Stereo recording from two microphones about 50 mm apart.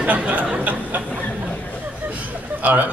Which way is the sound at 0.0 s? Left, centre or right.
Right.